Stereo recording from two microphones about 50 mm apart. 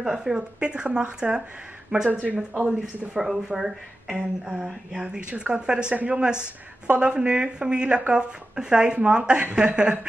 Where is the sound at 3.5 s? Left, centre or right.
Centre.